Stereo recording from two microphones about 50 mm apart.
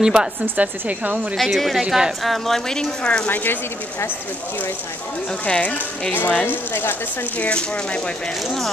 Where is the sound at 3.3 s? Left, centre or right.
Left.